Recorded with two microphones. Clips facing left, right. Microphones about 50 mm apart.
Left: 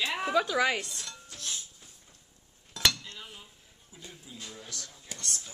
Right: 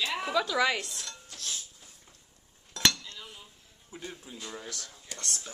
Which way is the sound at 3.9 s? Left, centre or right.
Right.